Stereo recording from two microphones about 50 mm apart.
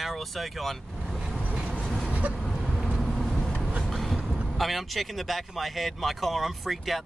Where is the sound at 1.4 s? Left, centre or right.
Right.